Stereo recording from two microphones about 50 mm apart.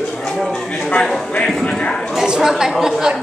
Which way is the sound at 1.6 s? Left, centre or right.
Centre.